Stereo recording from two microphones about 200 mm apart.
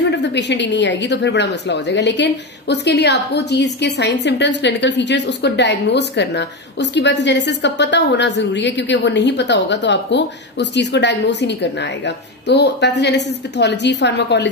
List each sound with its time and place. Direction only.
0.0 s a woman's voice: 60° left (ahead or behind)